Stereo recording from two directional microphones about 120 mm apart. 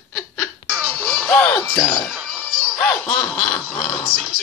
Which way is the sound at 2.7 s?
20° left (ahead or behind).